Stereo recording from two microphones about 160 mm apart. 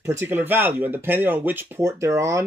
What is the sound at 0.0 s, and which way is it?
Speech, 15° right (ahead or behind).